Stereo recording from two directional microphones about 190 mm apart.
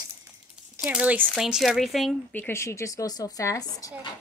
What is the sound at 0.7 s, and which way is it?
Speech, 5° right (ahead or behind).